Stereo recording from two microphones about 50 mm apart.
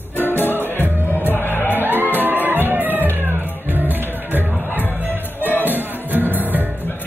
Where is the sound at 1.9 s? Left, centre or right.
Right.